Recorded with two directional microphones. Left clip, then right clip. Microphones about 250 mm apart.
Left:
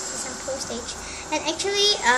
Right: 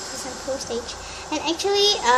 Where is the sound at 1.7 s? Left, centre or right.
Centre.